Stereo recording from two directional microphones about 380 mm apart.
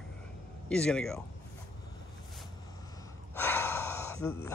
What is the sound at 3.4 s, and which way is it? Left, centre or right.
Gasp, centre.